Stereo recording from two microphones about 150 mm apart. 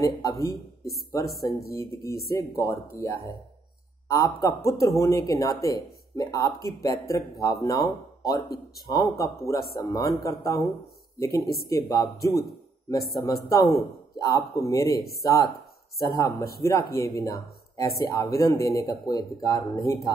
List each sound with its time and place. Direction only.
0.0 s speech: 20° left (ahead or behind)
1.2 s speech: 90° left
1.8 s speech: 20° left (ahead or behind)
16.2 s speech: 20° left (ahead or behind)